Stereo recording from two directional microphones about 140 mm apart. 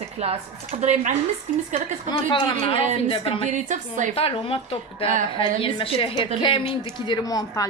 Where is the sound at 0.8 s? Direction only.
55° right (ahead or behind).